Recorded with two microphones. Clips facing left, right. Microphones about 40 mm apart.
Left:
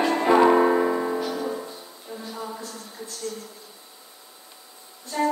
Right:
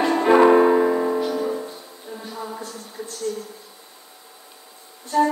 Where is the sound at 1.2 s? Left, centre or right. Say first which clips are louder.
Right 4 dB; right.